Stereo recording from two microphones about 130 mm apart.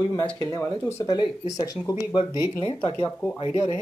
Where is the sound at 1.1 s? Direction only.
30° left (ahead or behind).